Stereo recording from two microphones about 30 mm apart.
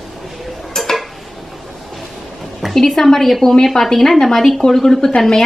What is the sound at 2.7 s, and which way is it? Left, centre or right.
A woman's voice, centre.